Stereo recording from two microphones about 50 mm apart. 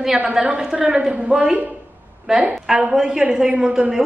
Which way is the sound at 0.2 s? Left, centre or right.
Right.